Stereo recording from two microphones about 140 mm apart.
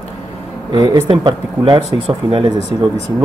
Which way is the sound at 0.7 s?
30° right (ahead or behind).